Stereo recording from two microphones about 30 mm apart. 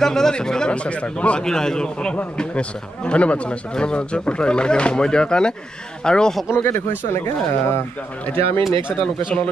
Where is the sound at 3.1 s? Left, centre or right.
Left.